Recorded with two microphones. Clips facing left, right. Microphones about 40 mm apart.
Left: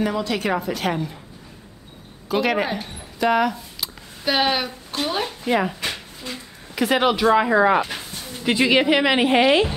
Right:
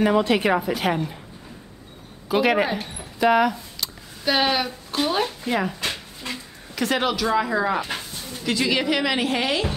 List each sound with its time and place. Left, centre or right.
0.0 s speech: right
0.5 s a woman's voice: centre
2.2 s a woman's voice: centre; by 9.8 s left